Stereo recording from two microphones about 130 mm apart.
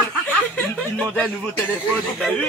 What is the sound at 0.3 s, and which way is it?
Snicker, 10° left (ahead or behind).